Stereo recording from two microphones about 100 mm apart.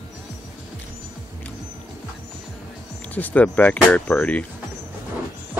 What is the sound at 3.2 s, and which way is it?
Speech, 15° left (ahead or behind).